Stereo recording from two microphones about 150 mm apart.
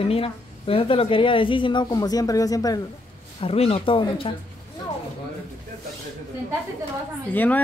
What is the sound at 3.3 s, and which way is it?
A woman's voice, 40° left (ahead or behind).